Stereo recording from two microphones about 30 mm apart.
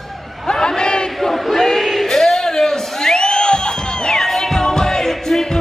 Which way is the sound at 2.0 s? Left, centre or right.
Centre.